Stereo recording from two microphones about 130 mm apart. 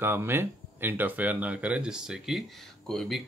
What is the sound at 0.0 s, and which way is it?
Speech, 20° right (ahead or behind).